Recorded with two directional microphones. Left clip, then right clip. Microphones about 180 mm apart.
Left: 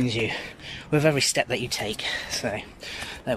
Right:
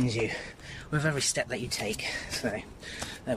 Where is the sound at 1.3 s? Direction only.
Centre (ahead or behind).